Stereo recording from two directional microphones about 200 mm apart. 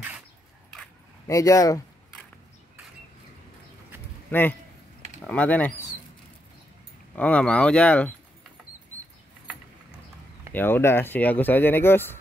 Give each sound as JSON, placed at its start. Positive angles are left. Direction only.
{"t": 1.2, "sound": "speech", "side_deg": 15}
{"t": 4.3, "sound": "a man's voice", "side_deg": 10}
{"t": 7.2, "sound": "speech", "side_deg": 5}
{"t": 10.5, "sound": "speech", "side_deg": 10}